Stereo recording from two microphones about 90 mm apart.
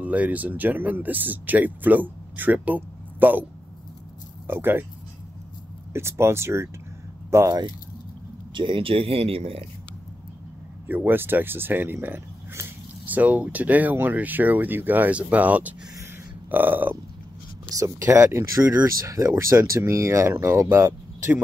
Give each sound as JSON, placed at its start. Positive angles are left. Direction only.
{"t": 0.0, "sound": "speech", "side_deg": -15}
{"t": 4.5, "sound": "speech", "side_deg": -25}
{"t": 5.9, "sound": "speech", "side_deg": -30}
{"t": 8.5, "sound": "speech", "side_deg": -70}
{"t": 10.9, "sound": "speech", "side_deg": -20}
{"t": 17.6, "sound": "speech", "side_deg": -40}
{"t": 18.0, "sound": "speech", "side_deg": -30}